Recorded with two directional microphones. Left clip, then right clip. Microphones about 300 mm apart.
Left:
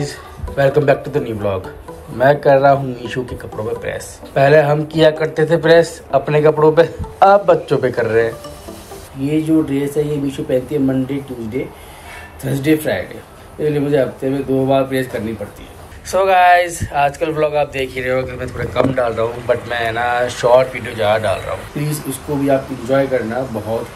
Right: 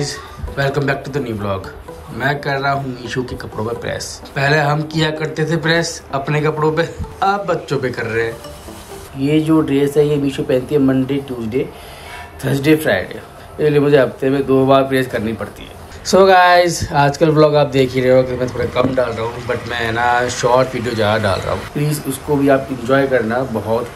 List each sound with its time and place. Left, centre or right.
0.0 s speech: centre
16.1 s speech: centre